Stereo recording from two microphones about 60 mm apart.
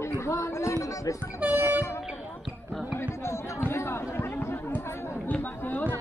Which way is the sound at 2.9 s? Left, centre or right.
Left.